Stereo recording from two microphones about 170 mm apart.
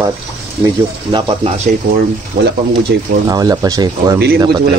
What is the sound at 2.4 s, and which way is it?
Speech, 60° right (ahead or behind).